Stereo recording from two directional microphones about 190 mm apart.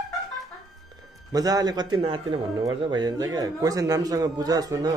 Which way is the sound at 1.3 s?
20° right (ahead or behind).